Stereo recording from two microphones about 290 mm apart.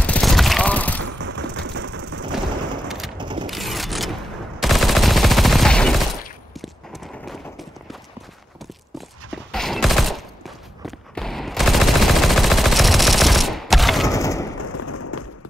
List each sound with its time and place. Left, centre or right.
0.0 s fusillade: centre
1.2 s vehicle: right
3.2 s mechanisms: centre
3.4 s machine gun: centre
6.6 s a sound: centre
9.5 s fusillade: centre
14.0 s splinter: centre
14.6 s a sound: left